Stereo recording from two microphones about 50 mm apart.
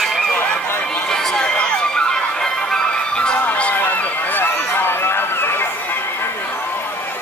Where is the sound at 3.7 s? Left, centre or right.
Left.